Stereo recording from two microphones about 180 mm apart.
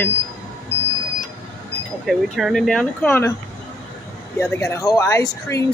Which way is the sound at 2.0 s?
Centre (ahead or behind).